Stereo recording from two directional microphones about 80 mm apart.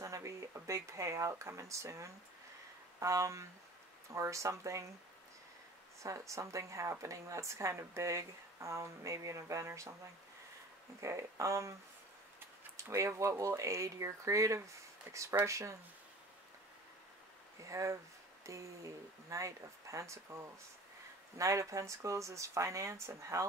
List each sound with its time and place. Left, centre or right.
0.0 s speech: right
6.0 s speech: right
11.0 s speech: right
17.6 s speech: right